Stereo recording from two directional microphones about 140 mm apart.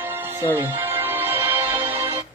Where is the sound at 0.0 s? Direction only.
15° right (ahead or behind).